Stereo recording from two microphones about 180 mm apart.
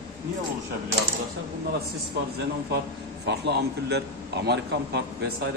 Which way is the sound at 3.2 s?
70° right (ahead or behind).